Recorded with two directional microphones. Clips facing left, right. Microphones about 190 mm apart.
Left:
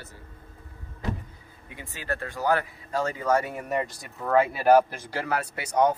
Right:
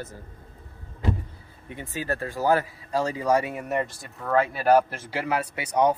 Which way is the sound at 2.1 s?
35° right (ahead or behind).